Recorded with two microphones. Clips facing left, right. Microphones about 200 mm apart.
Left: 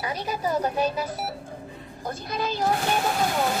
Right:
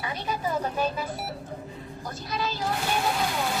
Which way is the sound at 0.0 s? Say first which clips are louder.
Left 2 dB; 40° left (ahead or behind).